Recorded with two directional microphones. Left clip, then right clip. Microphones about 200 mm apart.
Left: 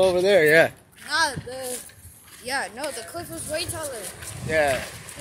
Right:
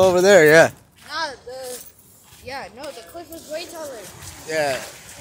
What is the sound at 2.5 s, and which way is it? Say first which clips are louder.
Speech: left 4 dB; 50° left (ahead or behind).